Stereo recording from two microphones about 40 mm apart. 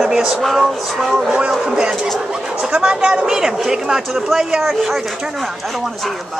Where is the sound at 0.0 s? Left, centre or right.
Centre.